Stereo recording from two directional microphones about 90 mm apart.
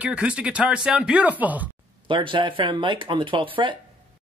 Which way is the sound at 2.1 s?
65° right (ahead or behind).